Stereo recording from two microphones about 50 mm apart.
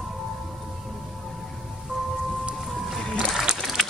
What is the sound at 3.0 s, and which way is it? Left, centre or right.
Music, centre.